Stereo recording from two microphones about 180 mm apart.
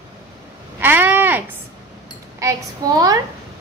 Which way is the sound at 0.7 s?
10° right (ahead or behind).